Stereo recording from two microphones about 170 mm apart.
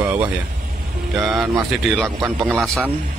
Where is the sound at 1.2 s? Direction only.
Centre (ahead or behind).